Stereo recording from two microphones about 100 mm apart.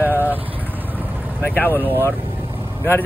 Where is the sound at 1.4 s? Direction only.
15° left (ahead or behind).